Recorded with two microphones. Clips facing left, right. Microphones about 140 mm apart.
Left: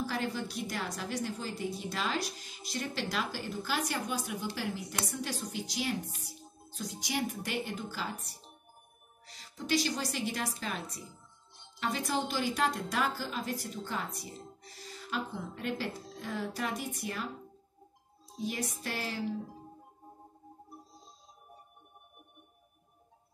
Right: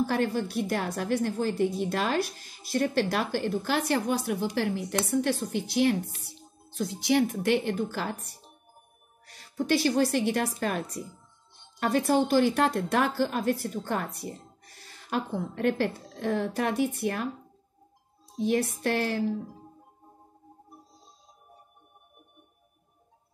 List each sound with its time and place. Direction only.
0.0 s a woman's voice: 45° right (ahead or behind)
7.6 s a woman's voice: 55° right (ahead or behind)
12.1 s a woman's voice: 45° right (ahead or behind)
18.4 s a sound: 55° right (ahead or behind)